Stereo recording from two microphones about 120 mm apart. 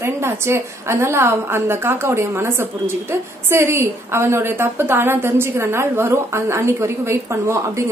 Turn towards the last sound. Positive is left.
turn(degrees=-25)  # may be behind; listen again after turning